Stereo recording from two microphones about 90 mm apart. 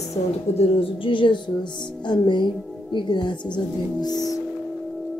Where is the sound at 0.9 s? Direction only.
70° left (ahead or behind).